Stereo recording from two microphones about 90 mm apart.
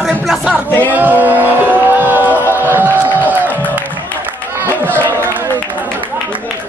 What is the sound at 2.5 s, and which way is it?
Music, 25° right (ahead or behind).